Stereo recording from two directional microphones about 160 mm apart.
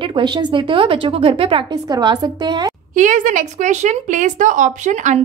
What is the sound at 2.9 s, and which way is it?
Speech, 50° right (ahead or behind).